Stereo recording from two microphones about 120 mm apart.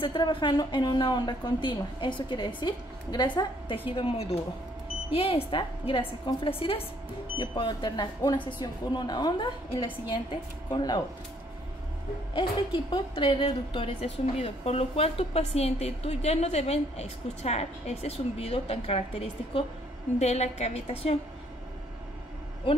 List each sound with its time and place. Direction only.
0.0 s a woman's voice: 45° left (ahead or behind)
12.4 s a woman's voice: 40° left (ahead or behind)